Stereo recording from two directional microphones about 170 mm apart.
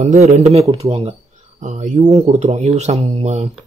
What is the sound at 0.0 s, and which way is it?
Speech, 40° right (ahead or behind).